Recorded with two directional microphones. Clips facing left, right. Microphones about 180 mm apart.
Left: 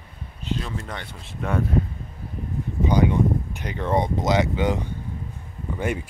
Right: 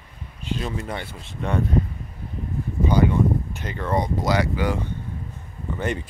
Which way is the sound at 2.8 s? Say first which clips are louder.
Even; 15° left (ahead or behind).